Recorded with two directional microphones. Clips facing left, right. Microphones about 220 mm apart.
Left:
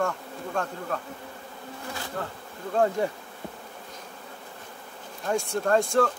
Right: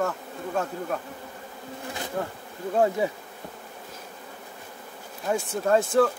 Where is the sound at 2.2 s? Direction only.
15° right (ahead or behind).